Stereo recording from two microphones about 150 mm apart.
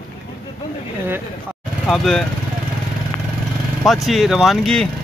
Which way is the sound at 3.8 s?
Centre (ahead or behind).